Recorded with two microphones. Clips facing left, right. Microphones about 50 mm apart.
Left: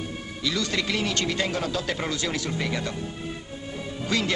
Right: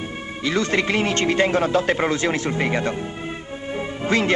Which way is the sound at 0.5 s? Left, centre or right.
Right.